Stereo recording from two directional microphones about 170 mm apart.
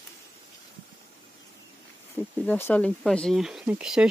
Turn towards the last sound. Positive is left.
turn(degrees=-5)  # may be behind; listen again after turning